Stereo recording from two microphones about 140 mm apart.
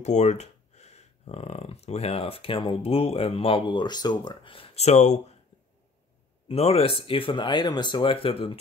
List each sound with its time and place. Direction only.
0.0 s speech: 55° left (ahead or behind)
6.4 s speech: 45° left (ahead or behind)